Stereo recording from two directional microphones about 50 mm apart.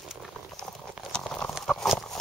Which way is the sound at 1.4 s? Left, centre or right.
Centre.